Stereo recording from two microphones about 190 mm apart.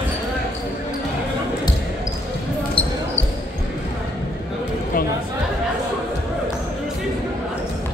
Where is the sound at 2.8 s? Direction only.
30° left (ahead or behind).